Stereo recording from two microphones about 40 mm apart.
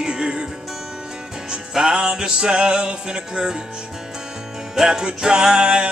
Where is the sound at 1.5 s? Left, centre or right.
Centre.